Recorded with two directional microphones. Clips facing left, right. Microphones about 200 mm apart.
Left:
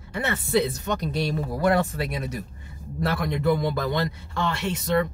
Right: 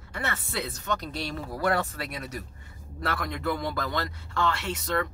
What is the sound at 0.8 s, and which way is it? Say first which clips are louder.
Speech: left 5 dB; 15° left (ahead or behind).